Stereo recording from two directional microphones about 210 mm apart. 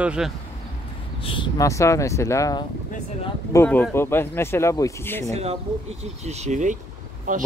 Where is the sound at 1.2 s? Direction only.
25° left (ahead or behind).